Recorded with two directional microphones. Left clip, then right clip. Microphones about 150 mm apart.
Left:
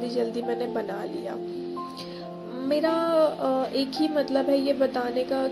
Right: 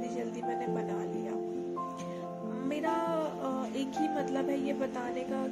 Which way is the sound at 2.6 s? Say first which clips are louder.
Left 9 dB; 10° left (ahead or behind).